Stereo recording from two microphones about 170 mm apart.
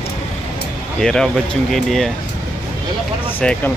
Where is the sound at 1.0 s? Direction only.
5° left (ahead or behind).